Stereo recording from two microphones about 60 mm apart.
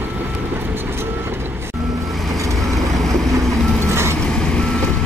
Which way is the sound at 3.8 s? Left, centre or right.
Right.